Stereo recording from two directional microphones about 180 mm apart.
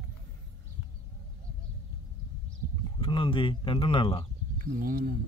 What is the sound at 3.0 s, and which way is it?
Speech, 30° left (ahead or behind).